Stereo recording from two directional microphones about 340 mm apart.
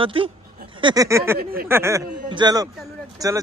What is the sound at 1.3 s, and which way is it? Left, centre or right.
Speech, right.